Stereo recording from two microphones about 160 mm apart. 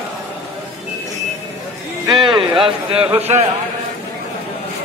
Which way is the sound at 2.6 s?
35° right (ahead or behind).